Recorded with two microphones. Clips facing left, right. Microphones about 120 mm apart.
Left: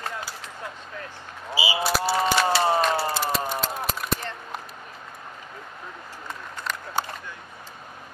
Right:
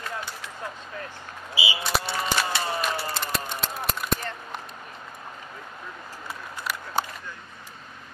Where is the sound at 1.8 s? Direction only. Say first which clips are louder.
Left 3 dB; 5° left (ahead or behind).